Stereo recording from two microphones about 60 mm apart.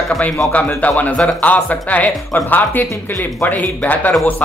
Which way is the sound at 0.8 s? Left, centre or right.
Left.